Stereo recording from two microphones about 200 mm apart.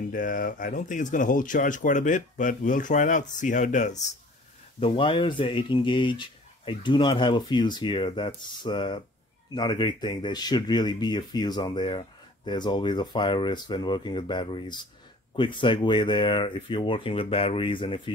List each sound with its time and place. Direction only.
0.1 s speech: 45° left (ahead or behind)
4.7 s speech: 25° left (ahead or behind)